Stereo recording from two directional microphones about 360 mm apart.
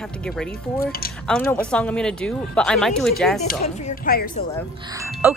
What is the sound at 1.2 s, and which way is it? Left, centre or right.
Speech, centre.